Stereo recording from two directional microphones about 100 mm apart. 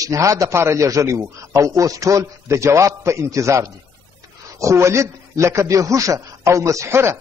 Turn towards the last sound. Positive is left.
turn(degrees=-25)  # may be behind; listen again after turning